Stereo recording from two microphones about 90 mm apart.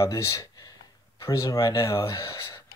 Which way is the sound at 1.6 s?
55° left (ahead or behind).